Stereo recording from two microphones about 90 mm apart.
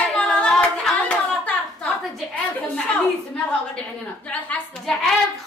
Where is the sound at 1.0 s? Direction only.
15° left (ahead or behind).